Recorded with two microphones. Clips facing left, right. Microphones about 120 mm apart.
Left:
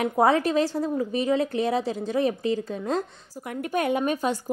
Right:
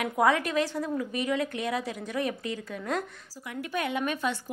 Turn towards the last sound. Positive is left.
turn(degrees=40)  # may be behind; listen again after turning